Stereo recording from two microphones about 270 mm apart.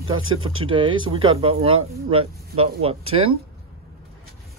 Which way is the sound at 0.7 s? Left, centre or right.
Centre.